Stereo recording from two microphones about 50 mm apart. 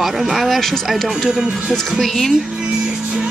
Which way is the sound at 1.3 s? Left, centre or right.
Centre.